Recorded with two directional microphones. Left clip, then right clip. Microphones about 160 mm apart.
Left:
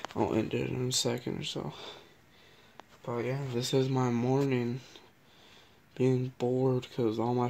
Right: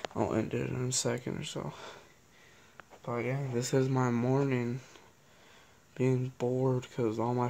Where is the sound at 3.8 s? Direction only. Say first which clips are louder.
Even; 10° right (ahead or behind).